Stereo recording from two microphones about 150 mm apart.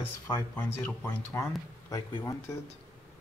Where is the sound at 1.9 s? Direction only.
25° left (ahead or behind).